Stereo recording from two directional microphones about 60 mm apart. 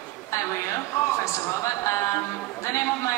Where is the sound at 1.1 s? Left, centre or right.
Left.